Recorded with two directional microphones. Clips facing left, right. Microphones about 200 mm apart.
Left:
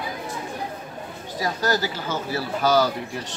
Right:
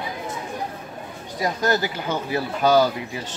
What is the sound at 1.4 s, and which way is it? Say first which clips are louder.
Speech: right 2 dB; 20° right (ahead or behind).